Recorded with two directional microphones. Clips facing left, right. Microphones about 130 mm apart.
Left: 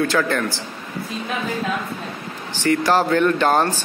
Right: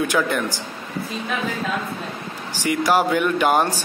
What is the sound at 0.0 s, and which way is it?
Speech, 15° right (ahead or behind).